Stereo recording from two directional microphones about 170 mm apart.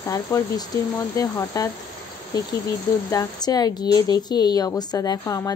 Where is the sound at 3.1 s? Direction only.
20° left (ahead or behind).